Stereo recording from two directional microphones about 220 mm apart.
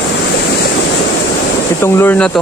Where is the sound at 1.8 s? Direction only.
10° left (ahead or behind).